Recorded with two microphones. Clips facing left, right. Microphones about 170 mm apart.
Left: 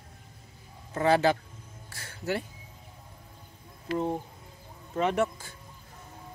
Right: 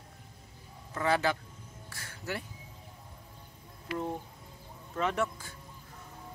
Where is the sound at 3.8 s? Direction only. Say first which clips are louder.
Left 6 dB; 25° left (ahead or behind).